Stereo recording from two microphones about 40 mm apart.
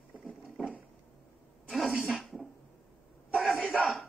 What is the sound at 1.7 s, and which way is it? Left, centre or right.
Sneeze, centre.